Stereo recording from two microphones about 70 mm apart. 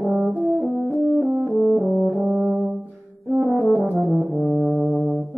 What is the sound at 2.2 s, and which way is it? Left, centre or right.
Brass instrument, centre.